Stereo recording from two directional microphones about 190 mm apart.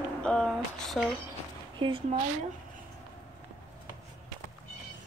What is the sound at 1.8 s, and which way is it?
Speech, 25° right (ahead or behind).